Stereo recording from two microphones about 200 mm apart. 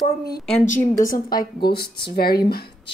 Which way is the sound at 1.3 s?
50° left (ahead or behind).